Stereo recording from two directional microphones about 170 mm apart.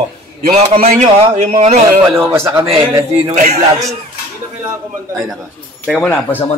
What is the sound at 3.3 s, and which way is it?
Speech, 45° right (ahead or behind).